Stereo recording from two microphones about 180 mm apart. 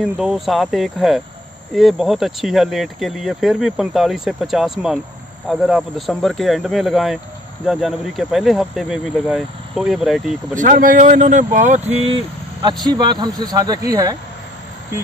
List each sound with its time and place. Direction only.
0.0 s speech: centre (ahead or behind)
10.5 s speech: 45° right (ahead or behind)
12.8 s speech: 25° right (ahead or behind)